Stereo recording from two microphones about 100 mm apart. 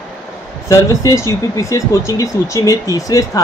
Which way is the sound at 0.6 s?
30° left (ahead or behind).